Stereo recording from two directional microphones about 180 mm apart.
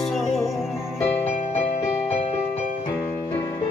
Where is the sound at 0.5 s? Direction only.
Centre (ahead or behind).